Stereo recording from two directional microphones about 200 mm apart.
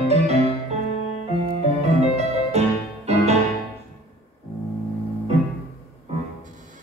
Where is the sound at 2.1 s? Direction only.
30° right (ahead or behind).